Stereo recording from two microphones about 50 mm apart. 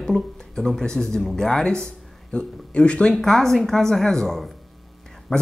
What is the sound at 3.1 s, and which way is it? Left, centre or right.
Speech, centre.